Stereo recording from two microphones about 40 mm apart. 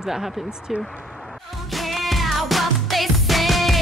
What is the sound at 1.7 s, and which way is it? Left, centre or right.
Music, centre.